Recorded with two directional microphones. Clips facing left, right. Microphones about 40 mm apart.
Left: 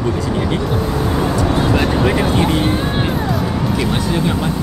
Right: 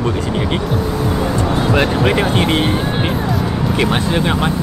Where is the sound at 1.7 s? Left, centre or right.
Right.